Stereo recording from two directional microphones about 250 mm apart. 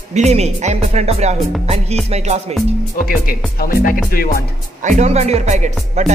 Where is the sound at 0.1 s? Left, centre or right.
Right.